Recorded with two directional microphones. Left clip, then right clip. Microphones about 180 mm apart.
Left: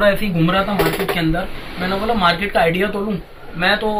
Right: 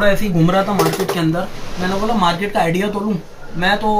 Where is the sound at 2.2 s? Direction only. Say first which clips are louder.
Left 2 dB; centre (ahead or behind).